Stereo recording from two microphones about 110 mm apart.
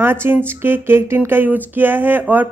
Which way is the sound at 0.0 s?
20° right (ahead or behind).